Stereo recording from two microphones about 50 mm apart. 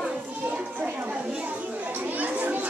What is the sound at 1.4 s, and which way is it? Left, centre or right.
Children playing, right.